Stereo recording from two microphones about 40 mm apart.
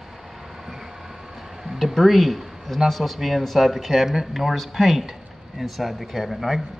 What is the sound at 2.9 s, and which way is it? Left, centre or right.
A man's voice, centre.